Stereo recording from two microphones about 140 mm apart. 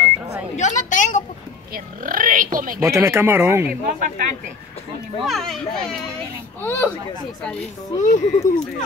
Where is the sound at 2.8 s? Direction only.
20° right (ahead or behind).